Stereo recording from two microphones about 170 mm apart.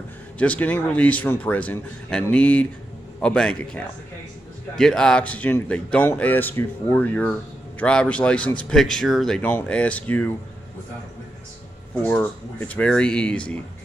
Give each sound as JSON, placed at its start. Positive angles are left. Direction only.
{"t": 0.4, "sound": "a man's voice", "side_deg": 10}
{"t": 11.9, "sound": "speech", "side_deg": 10}